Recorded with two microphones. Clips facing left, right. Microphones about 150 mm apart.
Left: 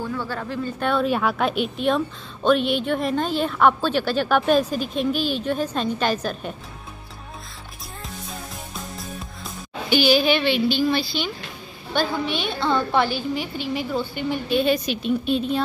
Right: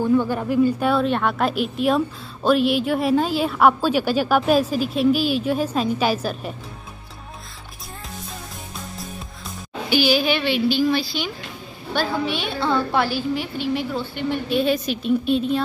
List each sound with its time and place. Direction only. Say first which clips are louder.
0.0 s speech: right 9 dB; 15° right (ahead or behind)
9.8 s speech: left 1 dB; 5° right (ahead or behind)